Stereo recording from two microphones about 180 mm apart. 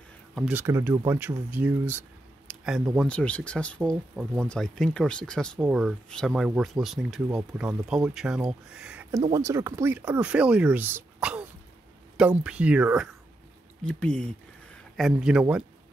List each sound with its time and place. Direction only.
0.3 s speech: 5° right (ahead or behind)
9.3 s speech: 20° right (ahead or behind)
13.8 s speech: 5° left (ahead or behind)